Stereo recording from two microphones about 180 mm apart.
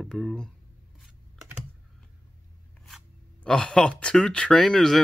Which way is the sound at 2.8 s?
5° left (ahead or behind).